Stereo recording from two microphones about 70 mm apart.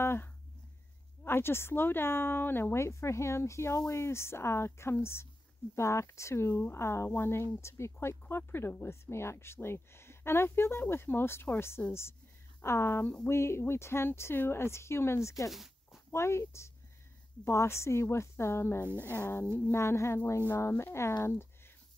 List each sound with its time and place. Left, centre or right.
0.0 s a sound: left
1.2 s speech: left
15.5 s a sound: centre
16.1 s speech: left
18.9 s speech: right
19.1 s speech: left